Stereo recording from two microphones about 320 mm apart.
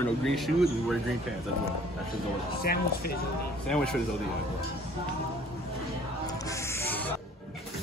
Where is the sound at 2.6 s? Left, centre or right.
Left.